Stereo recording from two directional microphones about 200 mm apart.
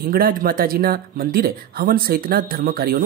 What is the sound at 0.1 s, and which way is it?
Speech, 45° right (ahead or behind).